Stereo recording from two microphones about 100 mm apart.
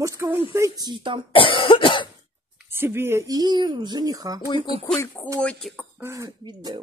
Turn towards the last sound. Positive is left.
turn(degrees=-50)  # may be behind; listen again after turning